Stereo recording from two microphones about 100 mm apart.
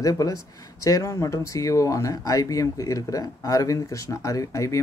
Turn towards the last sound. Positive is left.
turn(degrees=30)  # may be behind; listen again after turning